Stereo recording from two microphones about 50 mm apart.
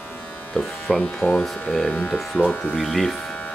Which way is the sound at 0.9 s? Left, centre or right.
Left.